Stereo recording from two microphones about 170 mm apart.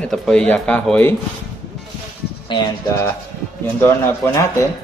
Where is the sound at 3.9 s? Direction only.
15° left (ahead or behind).